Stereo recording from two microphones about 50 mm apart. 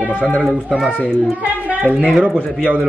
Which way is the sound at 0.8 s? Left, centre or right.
Right.